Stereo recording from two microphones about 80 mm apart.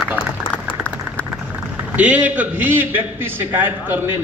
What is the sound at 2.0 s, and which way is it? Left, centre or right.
A man's voice, centre.